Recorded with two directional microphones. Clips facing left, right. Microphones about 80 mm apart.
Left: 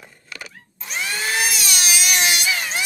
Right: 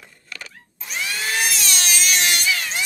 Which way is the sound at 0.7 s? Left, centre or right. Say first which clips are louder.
Left 1 dB; centre.